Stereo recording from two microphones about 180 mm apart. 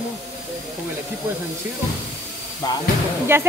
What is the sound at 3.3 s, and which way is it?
Speech, 15° right (ahead or behind).